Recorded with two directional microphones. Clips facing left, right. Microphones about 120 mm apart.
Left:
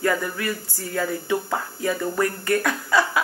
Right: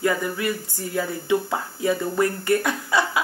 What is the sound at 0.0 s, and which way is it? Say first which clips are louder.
Speech: right 1 dB; 20° right (ahead or behind).